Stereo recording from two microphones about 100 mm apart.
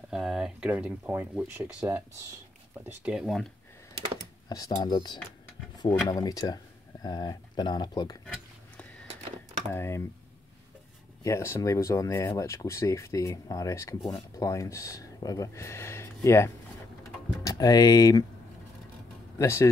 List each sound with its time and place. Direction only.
0.1 s speech: 5° right (ahead or behind)
4.5 s speech: 40° left (ahead or behind)
9.7 s speech: 25° left (ahead or behind)
11.2 s speech: 30° left (ahead or behind)
17.4 s speech: 35° left (ahead or behind)
19.3 s speech: 30° left (ahead or behind)